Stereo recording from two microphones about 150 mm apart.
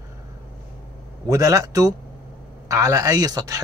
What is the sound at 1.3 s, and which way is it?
Speech, 25° right (ahead or behind).